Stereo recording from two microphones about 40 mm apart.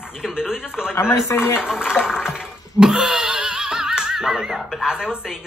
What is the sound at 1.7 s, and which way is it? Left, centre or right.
Speech, centre.